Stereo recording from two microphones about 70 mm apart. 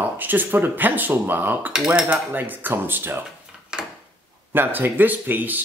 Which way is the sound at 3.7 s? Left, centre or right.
Centre.